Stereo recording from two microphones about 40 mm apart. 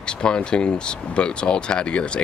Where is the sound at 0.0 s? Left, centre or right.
Left.